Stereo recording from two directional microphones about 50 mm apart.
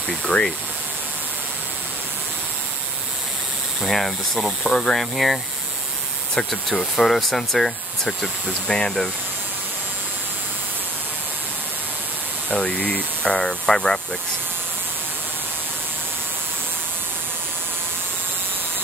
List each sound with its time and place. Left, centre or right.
3.8 s speech: centre
4.5 s speech: centre
6.3 s speech: centre
12.4 s speech: left